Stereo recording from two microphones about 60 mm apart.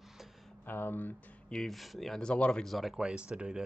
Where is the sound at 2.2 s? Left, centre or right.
Centre.